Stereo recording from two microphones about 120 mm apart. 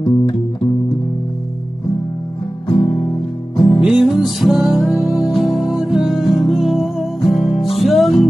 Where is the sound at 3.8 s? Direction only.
5° right (ahead or behind).